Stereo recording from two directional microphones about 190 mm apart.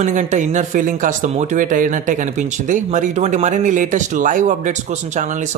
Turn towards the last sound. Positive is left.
turn(degrees=-40)  # may be behind; listen again after turning